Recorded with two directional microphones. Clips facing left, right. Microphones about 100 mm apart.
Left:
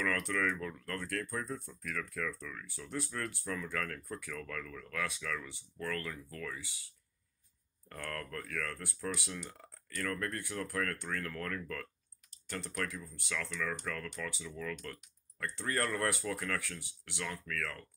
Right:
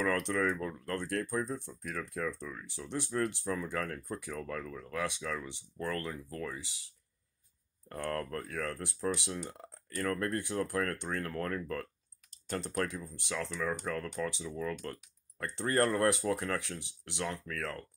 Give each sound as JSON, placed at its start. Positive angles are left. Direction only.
{"t": 0.0, "sound": "speech", "side_deg": -30}
{"t": 7.9, "sound": "speech", "side_deg": -30}